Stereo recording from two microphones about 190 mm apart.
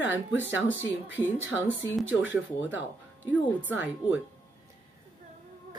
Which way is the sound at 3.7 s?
10° right (ahead or behind).